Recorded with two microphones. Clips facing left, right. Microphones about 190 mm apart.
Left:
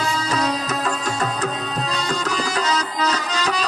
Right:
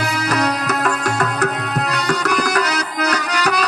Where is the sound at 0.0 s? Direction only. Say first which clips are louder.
Right 3 dB; 85° right.